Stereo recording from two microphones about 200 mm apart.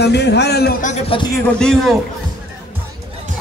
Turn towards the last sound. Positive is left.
turn(degrees=5)  # may be behind; listen again after turning